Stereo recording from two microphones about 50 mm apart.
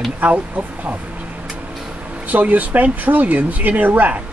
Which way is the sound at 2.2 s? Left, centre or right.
Right.